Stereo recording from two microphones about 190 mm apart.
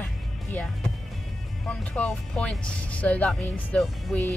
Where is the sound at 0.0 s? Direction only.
10° left (ahead or behind).